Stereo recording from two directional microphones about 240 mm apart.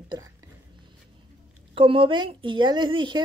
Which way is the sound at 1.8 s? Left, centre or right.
Right.